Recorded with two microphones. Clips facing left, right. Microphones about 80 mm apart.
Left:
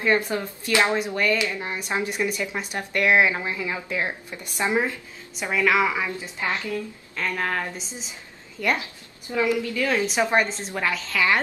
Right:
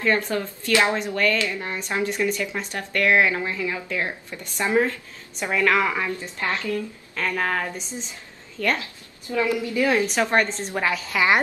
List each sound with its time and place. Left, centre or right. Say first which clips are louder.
0.0 s speech: even; centre
5.4 s a woman's voice: even; centre
7.2 s speech: right 2 dB; centre
8.5 s a woman's voice: even; centre
9.6 s a woman's voice: right 3 dB; centre
10.1 s a woman's voice: even; centre
10.8 s speech: right 1 dB; centre
11.1 s a woman's voice: right 2 dB; right